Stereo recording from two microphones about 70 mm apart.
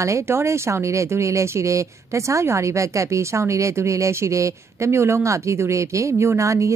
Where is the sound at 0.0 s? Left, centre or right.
Right.